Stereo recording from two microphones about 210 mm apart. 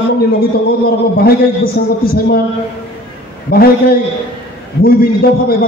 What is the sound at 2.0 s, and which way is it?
Speech, 45° left (ahead or behind).